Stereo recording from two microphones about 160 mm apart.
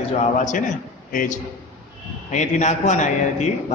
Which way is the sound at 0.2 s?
50° left (ahead or behind).